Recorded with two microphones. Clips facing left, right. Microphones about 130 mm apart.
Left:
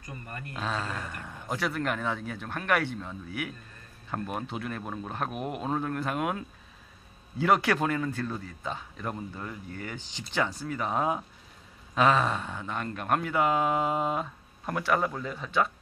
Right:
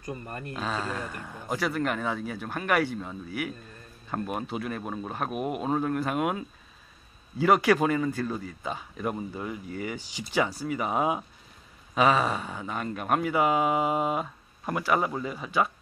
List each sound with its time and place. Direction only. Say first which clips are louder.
0.0 s speech: right 5 dB; 25° right (ahead or behind)
0.6 s a man's voice: right 1 dB; centre (ahead or behind)